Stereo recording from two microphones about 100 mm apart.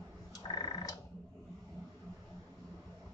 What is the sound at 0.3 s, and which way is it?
Frog, 40° left (ahead or behind).